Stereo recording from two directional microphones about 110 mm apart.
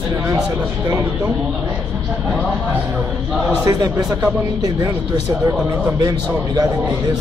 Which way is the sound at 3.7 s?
35° right (ahead or behind).